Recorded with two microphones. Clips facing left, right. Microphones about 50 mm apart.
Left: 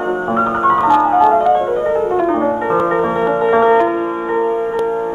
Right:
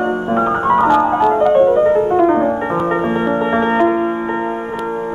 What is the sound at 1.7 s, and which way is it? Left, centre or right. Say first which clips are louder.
Piano: right 3 dB; centre.